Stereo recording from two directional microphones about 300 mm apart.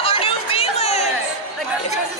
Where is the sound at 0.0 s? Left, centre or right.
Centre.